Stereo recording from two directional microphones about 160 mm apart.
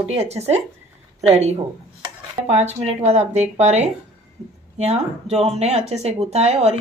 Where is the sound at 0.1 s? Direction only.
40° right (ahead or behind).